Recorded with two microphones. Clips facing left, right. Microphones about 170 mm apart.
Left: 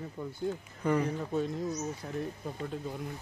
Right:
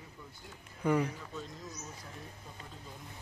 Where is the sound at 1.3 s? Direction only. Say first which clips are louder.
Left 12 dB; 60° left (ahead or behind).